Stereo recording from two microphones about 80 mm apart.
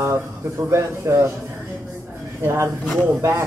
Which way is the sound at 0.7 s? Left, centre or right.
Right.